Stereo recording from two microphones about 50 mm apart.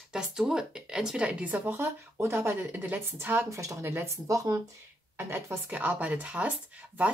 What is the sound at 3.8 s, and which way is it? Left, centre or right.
Speech, right.